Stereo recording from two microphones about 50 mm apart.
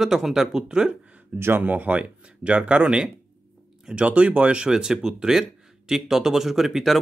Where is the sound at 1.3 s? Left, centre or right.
Right.